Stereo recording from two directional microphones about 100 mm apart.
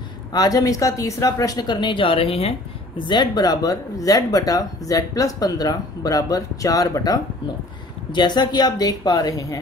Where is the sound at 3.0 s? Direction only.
45° left (ahead or behind).